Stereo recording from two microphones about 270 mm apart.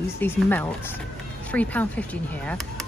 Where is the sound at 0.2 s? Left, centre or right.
Centre.